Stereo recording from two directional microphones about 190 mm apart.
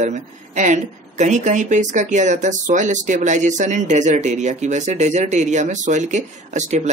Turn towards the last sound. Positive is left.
turn(degrees=-40)  # may be behind; listen again after turning